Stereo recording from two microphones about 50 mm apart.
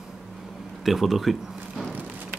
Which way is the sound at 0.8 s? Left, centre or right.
Centre.